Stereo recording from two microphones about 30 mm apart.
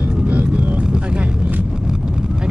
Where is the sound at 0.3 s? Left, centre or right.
Right.